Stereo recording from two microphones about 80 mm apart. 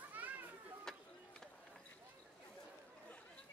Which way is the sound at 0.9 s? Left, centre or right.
Centre.